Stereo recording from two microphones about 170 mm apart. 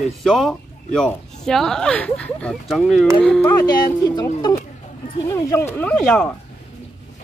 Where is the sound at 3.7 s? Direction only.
25° left (ahead or behind).